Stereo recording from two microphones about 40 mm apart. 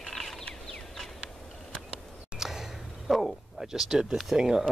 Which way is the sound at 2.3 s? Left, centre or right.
Centre.